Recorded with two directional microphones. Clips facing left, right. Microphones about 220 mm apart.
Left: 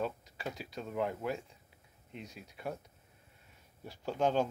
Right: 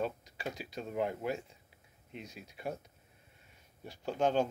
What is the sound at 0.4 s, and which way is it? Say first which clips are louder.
Speech: right 1 dB; centre (ahead or behind).